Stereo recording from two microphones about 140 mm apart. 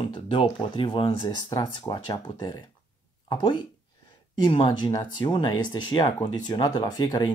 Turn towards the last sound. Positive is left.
turn(degrees=30)  # may be behind; listen again after turning